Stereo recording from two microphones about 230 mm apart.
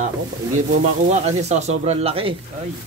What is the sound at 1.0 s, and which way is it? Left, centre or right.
Speech, right.